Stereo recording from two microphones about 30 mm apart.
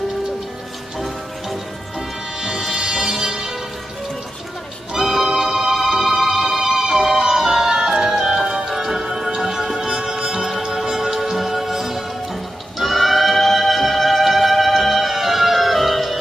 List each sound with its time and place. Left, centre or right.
0.9 s music: centre
5.0 s music: centre
7.0 s music: centre